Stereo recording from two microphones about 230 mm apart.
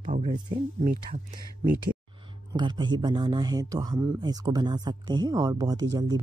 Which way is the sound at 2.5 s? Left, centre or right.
Centre.